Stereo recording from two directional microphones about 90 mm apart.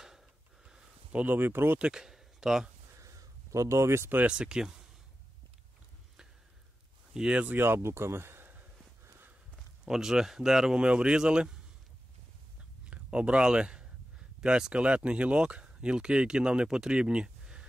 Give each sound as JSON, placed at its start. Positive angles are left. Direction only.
{"t": 0.7, "sound": "a sound", "side_deg": -10}
{"t": 1.2, "sound": "speech", "side_deg": -20}
{"t": 1.8, "sound": "speech", "side_deg": -5}
{"t": 3.0, "sound": "a sound", "side_deg": -35}
{"t": 4.3, "sound": "speech", "side_deg": -10}
{"t": 7.2, "sound": "speech", "side_deg": -10}
{"t": 7.5, "sound": "a sound", "side_deg": -25}
{"t": 9.8, "sound": "speech", "side_deg": -5}
{"t": 12.8, "sound": "speech", "side_deg": -10}